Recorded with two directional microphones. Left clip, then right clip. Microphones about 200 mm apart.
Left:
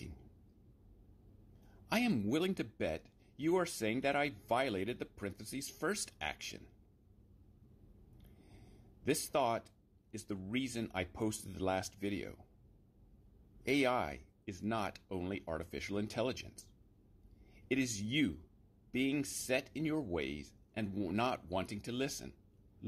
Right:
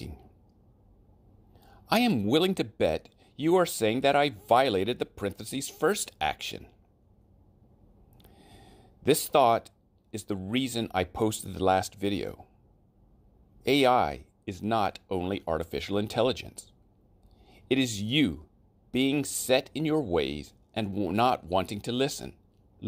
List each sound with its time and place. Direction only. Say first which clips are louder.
1.9 s speech: right 10 dB; 40° right (ahead or behind)
9.0 s speech: right 12 dB; 40° right (ahead or behind)
13.6 s speech: right 11 dB; 40° right (ahead or behind)